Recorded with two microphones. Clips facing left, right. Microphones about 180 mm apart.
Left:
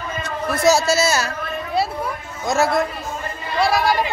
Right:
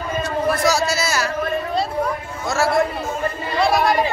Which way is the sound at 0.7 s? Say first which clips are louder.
Left 3 dB; 25° left (ahead or behind).